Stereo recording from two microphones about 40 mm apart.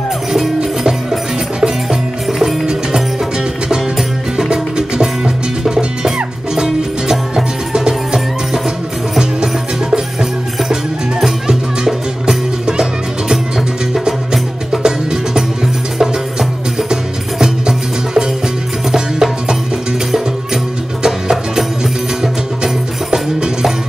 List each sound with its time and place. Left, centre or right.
2.2 s music: centre
4.4 s music: centre
9.2 s music: centre
14.0 s music: centre
21.0 s music: centre
23.1 s music: centre